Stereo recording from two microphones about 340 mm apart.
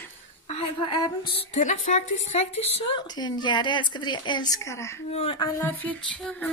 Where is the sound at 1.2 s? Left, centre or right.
Left.